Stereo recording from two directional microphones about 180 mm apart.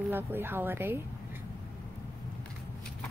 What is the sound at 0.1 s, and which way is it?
Speech, 10° right (ahead or behind).